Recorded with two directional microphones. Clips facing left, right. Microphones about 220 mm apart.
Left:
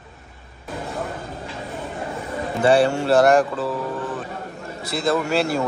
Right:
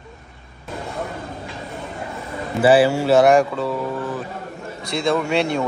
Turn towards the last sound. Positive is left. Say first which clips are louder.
# right 1 dB
turn(degrees=5)  # may be behind; listen again after turning